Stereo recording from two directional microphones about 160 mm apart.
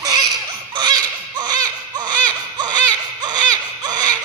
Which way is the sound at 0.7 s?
25° right (ahead or behind).